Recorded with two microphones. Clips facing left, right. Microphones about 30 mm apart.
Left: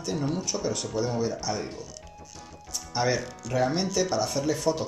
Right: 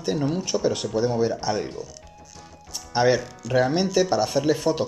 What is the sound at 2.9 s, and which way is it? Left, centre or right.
Speech, right.